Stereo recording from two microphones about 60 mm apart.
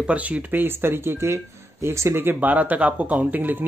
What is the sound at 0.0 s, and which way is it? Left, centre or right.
Speech, right.